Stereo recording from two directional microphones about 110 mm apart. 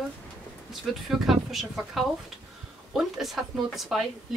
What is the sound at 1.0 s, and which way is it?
Speech, 5° right (ahead or behind).